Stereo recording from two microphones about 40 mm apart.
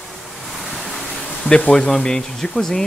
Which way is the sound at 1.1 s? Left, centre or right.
Left.